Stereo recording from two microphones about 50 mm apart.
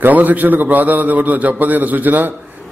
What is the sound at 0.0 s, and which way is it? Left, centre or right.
A man's voice, right.